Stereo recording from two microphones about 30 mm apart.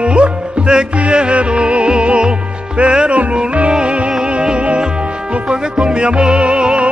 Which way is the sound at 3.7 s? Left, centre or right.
Right.